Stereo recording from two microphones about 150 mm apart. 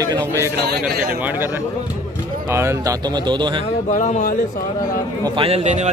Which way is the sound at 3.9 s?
55° left (ahead or behind).